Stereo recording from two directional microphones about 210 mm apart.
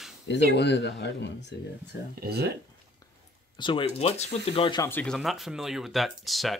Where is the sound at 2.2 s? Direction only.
50° right (ahead or behind).